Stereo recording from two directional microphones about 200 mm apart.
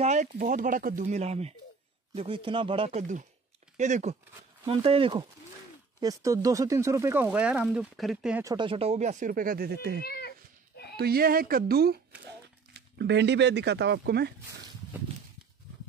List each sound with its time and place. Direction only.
0.0 s speech: 35° right (ahead or behind); by 8.5 s 5° right (ahead or behind)
8.5 s speech: 25° right (ahead or behind); by 10.0 s 55° right (ahead or behind)
10.0 s cat: 50° left (ahead or behind)
11.0 s speech: 50° right (ahead or behind)